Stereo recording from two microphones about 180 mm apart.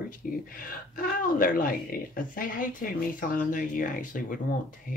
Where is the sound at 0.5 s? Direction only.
55° left (ahead or behind).